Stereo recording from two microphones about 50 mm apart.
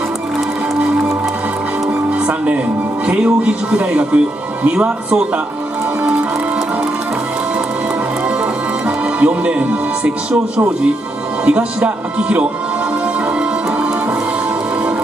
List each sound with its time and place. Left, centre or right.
2.2 s music: right
3.1 s speech: right
8.8 s speech: right
11.4 s speech: right